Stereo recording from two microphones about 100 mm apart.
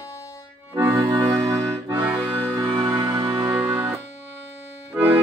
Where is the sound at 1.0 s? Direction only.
30° right (ahead or behind).